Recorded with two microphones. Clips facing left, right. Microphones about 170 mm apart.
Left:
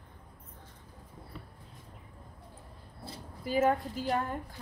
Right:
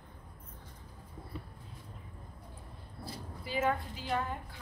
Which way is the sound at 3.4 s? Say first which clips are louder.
Left 5 dB; 45° left (ahead or behind).